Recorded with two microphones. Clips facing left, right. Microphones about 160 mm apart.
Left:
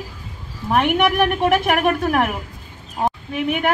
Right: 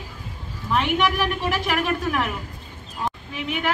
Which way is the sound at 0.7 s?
55° left (ahead or behind).